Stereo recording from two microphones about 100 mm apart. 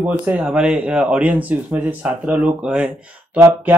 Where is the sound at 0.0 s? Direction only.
20° right (ahead or behind).